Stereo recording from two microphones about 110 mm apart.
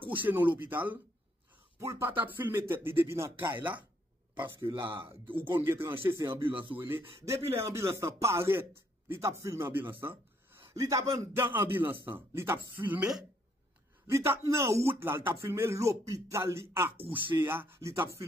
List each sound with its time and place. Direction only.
0.2 s speech: 15° right (ahead or behind)
4.6 s speech: 45° right (ahead or behind)
4.9 s speech: 25° right (ahead or behind)
6.5 s speech: 50° right (ahead or behind)
6.8 s a man's voice: 20° right (ahead or behind)
11.4 s speech: 20° right (ahead or behind)